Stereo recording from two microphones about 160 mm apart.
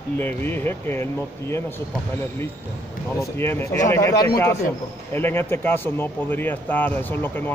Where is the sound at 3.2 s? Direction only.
15° left (ahead or behind).